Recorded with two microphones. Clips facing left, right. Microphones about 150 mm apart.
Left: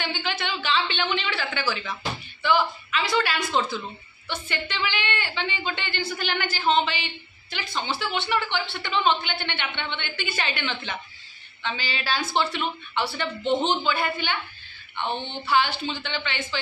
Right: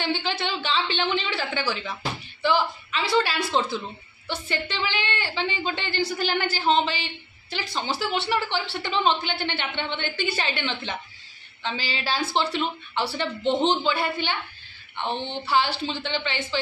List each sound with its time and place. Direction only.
0.0 s a woman's voice: 30° right (ahead or behind)